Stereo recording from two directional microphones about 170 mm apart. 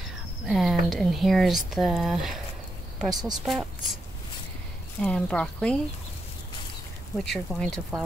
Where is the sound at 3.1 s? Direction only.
25° right (ahead or behind).